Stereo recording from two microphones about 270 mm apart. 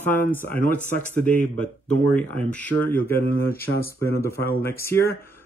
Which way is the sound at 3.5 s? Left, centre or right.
Left.